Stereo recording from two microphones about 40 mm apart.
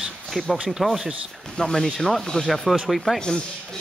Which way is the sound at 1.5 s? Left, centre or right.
Centre.